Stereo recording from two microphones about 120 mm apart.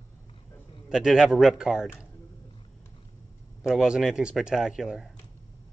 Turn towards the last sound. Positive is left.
turn(degrees=-5)  # may be behind; listen again after turning